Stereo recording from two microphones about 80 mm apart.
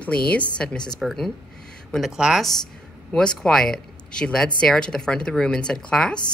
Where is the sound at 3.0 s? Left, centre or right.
Centre.